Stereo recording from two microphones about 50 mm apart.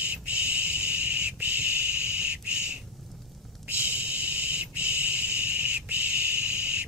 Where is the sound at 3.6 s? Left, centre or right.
Right.